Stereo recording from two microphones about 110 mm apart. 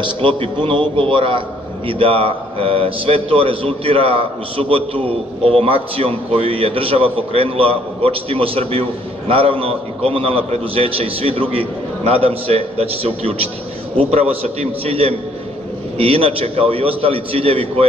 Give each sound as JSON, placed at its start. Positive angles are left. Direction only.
{"t": 0.0, "sound": "a man's voice", "side_deg": -55}